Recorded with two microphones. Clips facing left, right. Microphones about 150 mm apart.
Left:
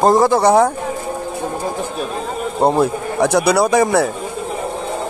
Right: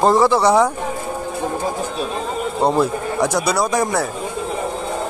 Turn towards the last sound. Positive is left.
turn(degrees=70)  # may be behind; listen again after turning